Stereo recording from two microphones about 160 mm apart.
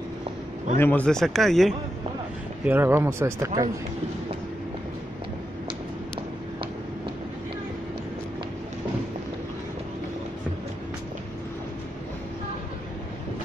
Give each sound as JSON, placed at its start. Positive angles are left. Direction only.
{"t": 0.7, "sound": "speech", "side_deg": 10}
{"t": 2.6, "sound": "speech", "side_deg": -10}